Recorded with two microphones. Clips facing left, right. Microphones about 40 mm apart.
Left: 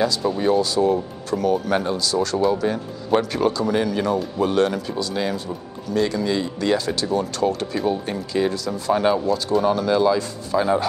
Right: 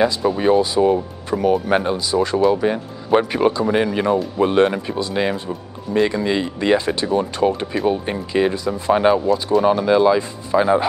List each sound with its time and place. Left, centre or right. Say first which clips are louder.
0.0 s speech: right 3 dB; right